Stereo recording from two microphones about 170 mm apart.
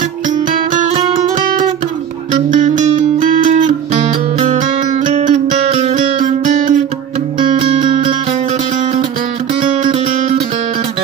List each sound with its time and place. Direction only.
2.5 s music: 50° right (ahead or behind)
5.0 s music: 45° right (ahead or behind)